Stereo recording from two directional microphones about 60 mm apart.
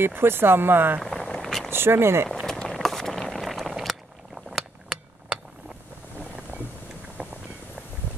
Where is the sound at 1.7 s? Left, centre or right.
Right.